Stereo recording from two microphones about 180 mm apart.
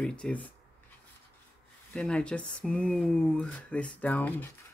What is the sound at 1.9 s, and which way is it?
Speech, 5° left (ahead or behind).